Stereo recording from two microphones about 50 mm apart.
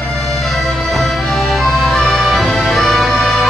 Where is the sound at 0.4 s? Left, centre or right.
Centre.